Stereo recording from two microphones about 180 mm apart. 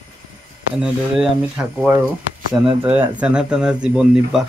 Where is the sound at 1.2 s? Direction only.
5° right (ahead or behind).